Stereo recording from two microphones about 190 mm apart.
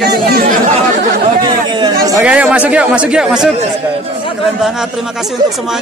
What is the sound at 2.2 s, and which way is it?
Speech, 5° right (ahead or behind).